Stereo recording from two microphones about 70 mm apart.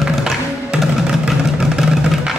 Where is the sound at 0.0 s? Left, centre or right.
Centre.